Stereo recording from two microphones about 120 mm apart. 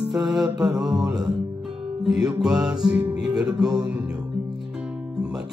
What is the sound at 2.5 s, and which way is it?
Music, 35° right (ahead or behind).